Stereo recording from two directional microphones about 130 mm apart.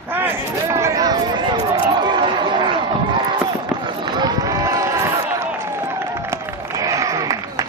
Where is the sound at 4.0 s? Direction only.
30° right (ahead or behind).